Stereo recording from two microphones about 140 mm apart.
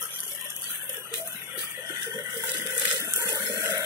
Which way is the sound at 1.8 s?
20° right (ahead or behind).